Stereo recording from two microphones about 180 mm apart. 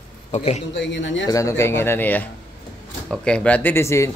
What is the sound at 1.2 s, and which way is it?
Speech, 20° left (ahead or behind).